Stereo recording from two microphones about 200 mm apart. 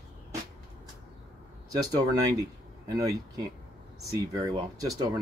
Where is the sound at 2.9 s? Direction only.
15° right (ahead or behind).